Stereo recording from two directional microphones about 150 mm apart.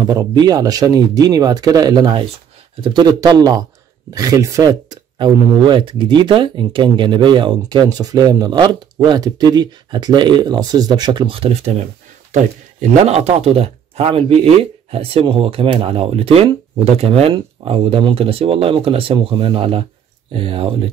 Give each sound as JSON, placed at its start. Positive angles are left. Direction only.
{"t": 0.0, "sound": "speech", "side_deg": -25}
{"t": 13.0, "sound": "speech", "side_deg": -45}